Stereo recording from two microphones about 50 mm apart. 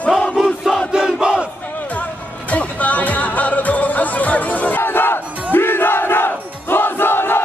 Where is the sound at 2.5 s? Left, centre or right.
Left.